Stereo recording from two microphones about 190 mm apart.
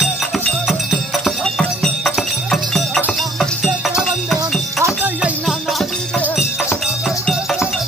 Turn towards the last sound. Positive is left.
turn(degrees=-5)  # may be behind; listen again after turning